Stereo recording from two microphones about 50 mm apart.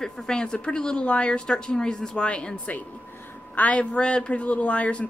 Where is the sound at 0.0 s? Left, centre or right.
Centre.